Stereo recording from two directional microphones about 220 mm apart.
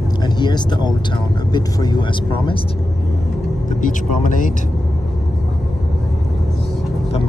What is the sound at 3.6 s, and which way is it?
Speech, 35° left (ahead or behind).